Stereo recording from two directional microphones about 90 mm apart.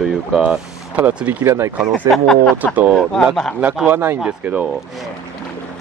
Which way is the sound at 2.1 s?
5° left (ahead or behind).